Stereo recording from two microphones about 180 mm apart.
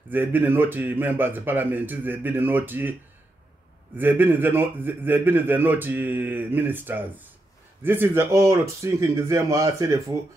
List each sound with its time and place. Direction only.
0.1 s a man's voice: 10° right (ahead or behind)